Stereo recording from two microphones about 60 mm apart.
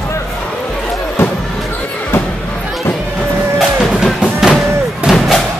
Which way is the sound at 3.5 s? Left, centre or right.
Centre.